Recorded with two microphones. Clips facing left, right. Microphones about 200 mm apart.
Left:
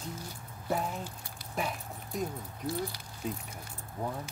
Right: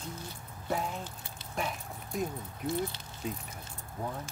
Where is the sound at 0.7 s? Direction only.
5° left (ahead or behind).